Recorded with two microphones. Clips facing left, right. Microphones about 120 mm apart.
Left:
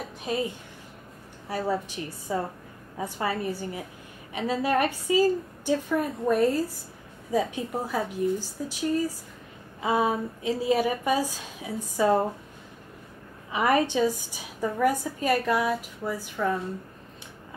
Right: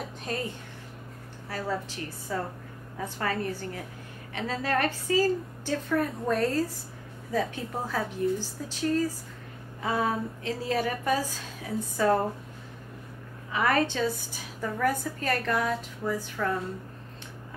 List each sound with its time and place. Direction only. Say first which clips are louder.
0.2 s a woman's voice: left 5 dB; 10° left (ahead or behind)
1.5 s a woman's voice: left 4 dB; 15° left (ahead or behind)
13.5 s a woman's voice: left 2 dB; 15° left (ahead or behind)